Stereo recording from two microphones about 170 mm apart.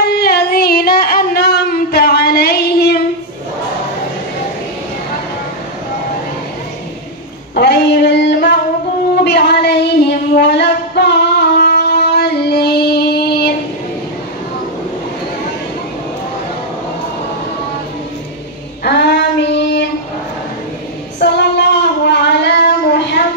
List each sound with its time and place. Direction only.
0.0 s a sound: 65° left (ahead or behind)
7.5 s female singing: 75° left (ahead or behind)
9.1 s child singing: 75° left (ahead or behind)
18.9 s child singing: 80° left
21.2 s female singing: 80° left